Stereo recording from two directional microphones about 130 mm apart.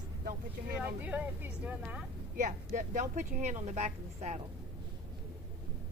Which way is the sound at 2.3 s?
90° right.